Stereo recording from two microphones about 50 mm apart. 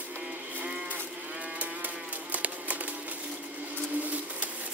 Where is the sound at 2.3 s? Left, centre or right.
Right.